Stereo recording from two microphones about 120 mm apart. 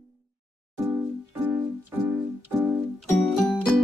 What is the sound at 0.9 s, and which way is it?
Keyboard, 15° right (ahead or behind).